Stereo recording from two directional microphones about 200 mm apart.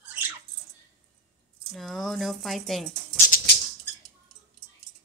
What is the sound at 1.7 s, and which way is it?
Speech, centre (ahead or behind).